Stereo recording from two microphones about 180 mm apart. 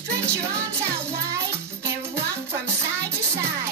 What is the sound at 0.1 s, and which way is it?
Music, 15° right (ahead or behind).